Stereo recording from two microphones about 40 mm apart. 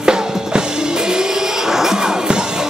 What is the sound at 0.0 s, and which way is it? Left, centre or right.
Drum kit, centre.